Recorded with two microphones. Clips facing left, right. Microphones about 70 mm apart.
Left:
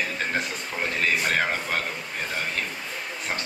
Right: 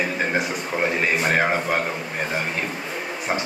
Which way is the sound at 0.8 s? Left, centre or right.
Right.